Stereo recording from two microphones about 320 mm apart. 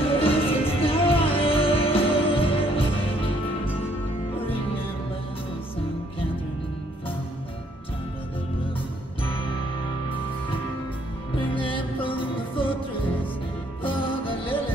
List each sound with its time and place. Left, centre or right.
0.0 s music: centre
4.4 s music: centre
9.2 s music: centre
11.3 s music: centre
13.8 s music: centre